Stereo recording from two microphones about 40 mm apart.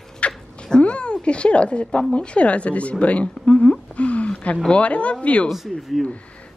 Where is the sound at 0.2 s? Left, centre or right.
Left.